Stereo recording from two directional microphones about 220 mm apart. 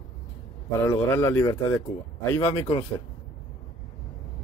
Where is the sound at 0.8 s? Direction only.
10° left (ahead or behind).